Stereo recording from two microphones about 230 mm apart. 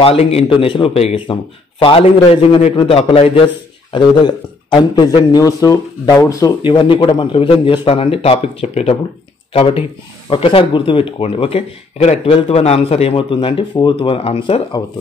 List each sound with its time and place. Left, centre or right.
0.0 s a man's voice: left